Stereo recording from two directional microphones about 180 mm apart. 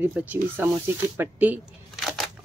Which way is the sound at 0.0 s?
10° right (ahead or behind).